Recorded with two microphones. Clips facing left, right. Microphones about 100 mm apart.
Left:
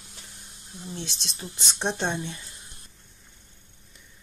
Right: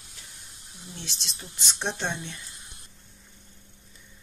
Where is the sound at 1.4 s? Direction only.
25° left (ahead or behind).